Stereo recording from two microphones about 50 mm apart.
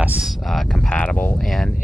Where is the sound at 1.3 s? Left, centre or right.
Centre.